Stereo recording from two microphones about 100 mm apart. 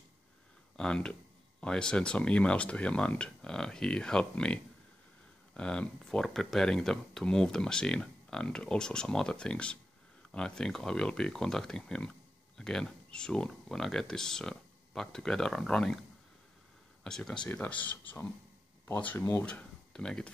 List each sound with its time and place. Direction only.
0.7 s speech: 10° left (ahead or behind)
17.0 s speech: 5° left (ahead or behind)
17.5 s speech: 15° left (ahead or behind)
19.4 s speech: 10° left (ahead or behind)